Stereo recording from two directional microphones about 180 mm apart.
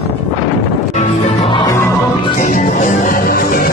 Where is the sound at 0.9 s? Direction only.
40° left (ahead or behind); by 1.9 s 20° left (ahead or behind).